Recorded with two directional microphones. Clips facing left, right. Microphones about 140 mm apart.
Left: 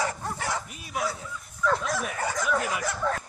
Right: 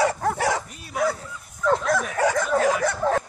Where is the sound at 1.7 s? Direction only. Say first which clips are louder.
Right 8 dB; 55° right (ahead or behind).